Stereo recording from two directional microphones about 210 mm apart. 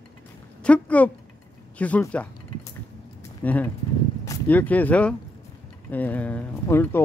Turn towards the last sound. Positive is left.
turn(degrees=10)  # may be behind; listen again after turning